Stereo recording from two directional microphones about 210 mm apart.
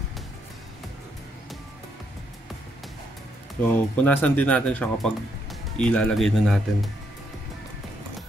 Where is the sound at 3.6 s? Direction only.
5° left (ahead or behind).